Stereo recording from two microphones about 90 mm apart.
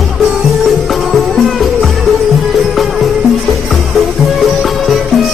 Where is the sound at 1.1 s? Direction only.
Centre (ahead or behind).